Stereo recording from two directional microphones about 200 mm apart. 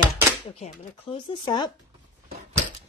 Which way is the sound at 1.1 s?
20° left (ahead or behind).